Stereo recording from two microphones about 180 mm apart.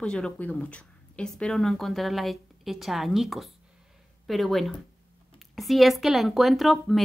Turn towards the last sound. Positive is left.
turn(degrees=0)  # may be behind; listen again after turning